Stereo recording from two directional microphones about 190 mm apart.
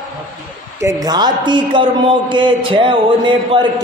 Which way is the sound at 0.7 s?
15° right (ahead or behind).